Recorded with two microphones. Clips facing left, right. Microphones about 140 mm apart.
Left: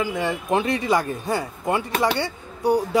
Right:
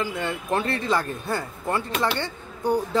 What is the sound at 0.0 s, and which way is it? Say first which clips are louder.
Speech: left 3 dB; 15° left (ahead or behind).